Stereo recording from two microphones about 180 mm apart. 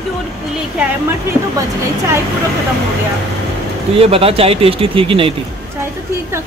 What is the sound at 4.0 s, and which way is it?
Speech, 35° right (ahead or behind).